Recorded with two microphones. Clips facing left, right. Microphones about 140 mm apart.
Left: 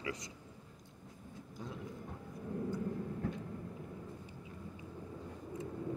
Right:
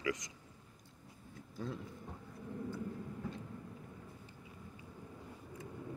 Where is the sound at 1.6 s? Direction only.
15° left (ahead or behind).